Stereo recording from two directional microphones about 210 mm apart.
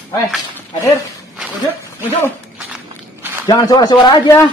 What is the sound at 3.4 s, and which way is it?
Speech, 15° left (ahead or behind).